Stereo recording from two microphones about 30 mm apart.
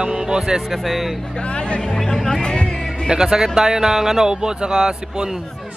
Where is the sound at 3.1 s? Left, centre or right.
Right.